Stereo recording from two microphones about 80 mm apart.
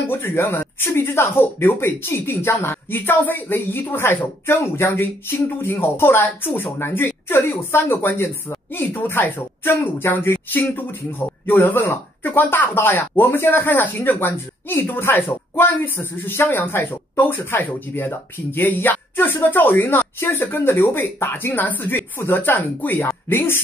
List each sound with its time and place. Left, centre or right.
0.1 s speech: left